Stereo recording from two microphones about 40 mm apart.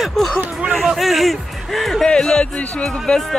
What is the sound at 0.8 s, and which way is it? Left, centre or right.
Music, centre.